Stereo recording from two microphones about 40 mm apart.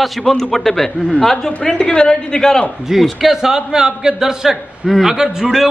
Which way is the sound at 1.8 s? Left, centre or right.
Left.